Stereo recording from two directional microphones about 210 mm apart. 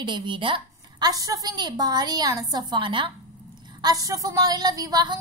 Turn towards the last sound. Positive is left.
turn(degrees=-20)  # may be behind; listen again after turning